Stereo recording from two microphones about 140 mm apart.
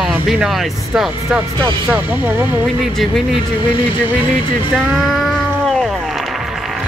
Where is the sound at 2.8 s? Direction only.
Centre (ahead or behind).